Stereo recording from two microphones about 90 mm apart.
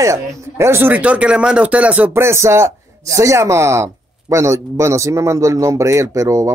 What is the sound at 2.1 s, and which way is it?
Speech, 30° right (ahead or behind).